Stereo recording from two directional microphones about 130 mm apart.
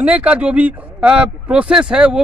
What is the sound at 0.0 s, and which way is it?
Speech, 10° right (ahead or behind).